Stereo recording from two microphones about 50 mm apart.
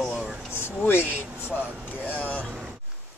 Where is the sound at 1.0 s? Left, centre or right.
Right.